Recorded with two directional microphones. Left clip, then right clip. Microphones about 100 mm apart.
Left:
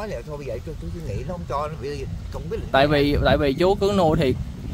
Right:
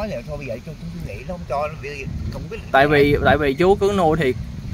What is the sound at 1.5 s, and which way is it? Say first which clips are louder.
Speech: right 3 dB; 30° left (ahead or behind).